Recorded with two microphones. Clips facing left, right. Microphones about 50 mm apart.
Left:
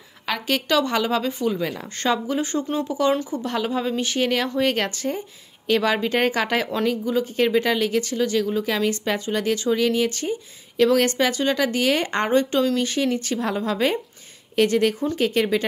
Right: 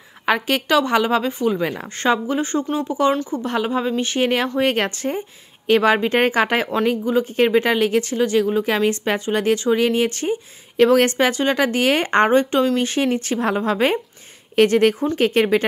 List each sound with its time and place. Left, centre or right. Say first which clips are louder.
0.2 s a woman's voice: right 5 dB; right
2.4 s speech: right 3 dB; centre
3.4 s a woman's voice: right 4 dB; right